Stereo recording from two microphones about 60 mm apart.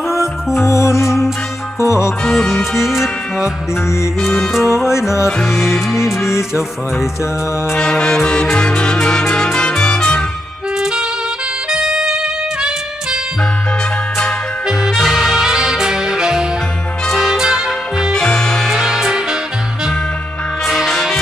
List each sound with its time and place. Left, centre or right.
0.6 s music: left
2.3 s music: centre
7.7 s music: centre
10.8 s music: centre
15.0 s music: centre
18.1 s music: centre
18.7 s music: centre
20.6 s music: centre